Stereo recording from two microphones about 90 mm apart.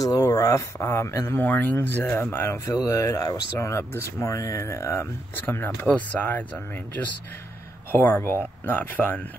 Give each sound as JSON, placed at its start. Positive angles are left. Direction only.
{"t": 0.0, "sound": "speech", "side_deg": 45}
{"t": 1.4, "sound": "speech", "side_deg": 20}
{"t": 7.9, "sound": "speech", "side_deg": 25}